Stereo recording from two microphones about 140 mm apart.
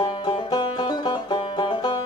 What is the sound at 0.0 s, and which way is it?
Music, 35° left (ahead or behind).